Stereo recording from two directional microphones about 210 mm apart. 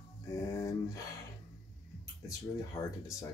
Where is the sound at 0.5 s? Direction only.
15° left (ahead or behind).